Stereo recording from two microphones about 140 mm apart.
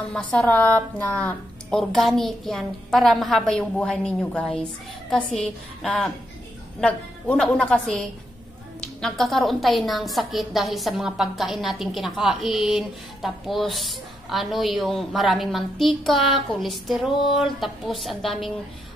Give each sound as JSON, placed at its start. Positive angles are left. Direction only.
{"t": 0.1, "sound": "a woman's voice", "side_deg": 5}